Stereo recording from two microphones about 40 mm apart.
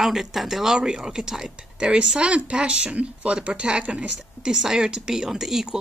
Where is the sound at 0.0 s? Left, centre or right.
Centre.